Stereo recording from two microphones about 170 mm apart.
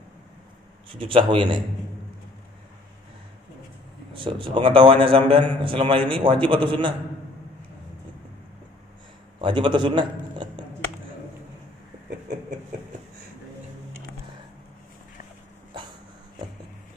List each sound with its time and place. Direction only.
0.8 s a man's voice: 30° right (ahead or behind)
4.1 s a man's voice: 30° right (ahead or behind)
9.4 s a man's voice: 30° right (ahead or behind)